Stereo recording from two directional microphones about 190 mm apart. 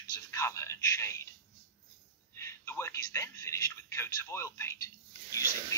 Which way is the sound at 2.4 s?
15° left (ahead or behind).